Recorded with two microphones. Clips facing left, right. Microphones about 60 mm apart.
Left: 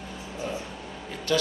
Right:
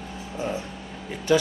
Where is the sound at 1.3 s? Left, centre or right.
Centre.